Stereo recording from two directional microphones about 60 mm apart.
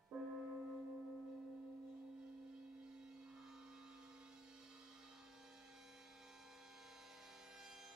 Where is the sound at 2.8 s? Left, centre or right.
Centre.